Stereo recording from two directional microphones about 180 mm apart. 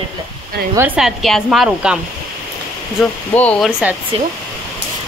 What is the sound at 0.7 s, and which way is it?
Speech, 10° right (ahead or behind).